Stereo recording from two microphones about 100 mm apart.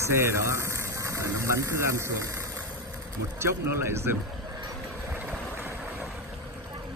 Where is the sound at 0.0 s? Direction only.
25° right (ahead or behind).